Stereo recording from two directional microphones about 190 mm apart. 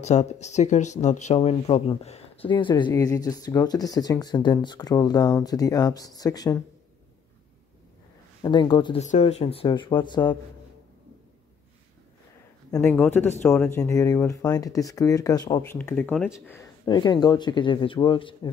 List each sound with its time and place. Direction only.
0.0 s speech: 35° left (ahead or behind); by 6.6 s 20° left (ahead or behind)
8.4 s speech: 20° left (ahead or behind)
9.0 s speech: 40° left (ahead or behind)
12.7 s speech: 10° left (ahead or behind)
15.8 s speech: 10° left (ahead or behind)
16.4 s speech: 15° left (ahead or behind)